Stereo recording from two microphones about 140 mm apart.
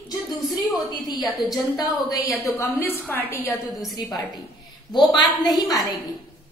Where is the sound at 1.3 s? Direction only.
Centre (ahead or behind).